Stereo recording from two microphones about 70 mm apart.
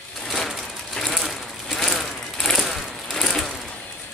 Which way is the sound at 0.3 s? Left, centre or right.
Centre.